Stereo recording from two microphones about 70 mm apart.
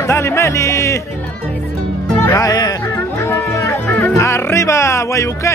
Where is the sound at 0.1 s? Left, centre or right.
Left.